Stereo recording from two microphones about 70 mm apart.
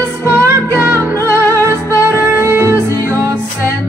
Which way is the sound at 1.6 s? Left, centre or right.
Left.